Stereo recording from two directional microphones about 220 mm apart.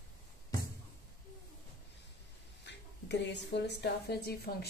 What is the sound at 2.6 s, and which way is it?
A woman's voice, 50° left (ahead or behind).